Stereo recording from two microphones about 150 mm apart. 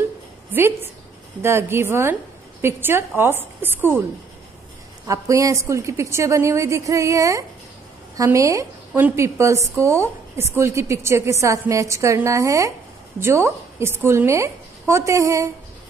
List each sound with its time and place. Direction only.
0.5 s a woman's voice: 15° right (ahead or behind)
5.0 s a woman's voice: 20° right (ahead or behind)